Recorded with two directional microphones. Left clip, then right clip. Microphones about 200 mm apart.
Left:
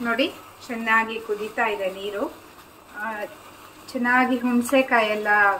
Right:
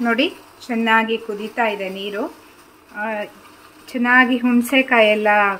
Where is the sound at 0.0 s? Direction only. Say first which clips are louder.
Right 5 dB; 60° right (ahead or behind).